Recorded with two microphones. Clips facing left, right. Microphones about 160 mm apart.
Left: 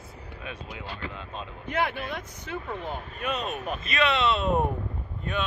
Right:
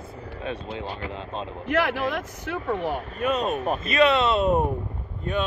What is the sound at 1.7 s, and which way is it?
Speech, 90° right.